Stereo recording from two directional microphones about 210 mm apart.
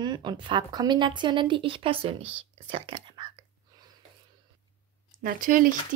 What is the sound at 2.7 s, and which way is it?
Speech, 25° right (ahead or behind).